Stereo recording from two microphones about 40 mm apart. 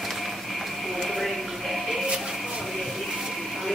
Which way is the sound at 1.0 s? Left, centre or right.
Centre.